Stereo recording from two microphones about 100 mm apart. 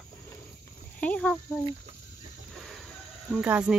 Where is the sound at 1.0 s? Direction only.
10° left (ahead or behind).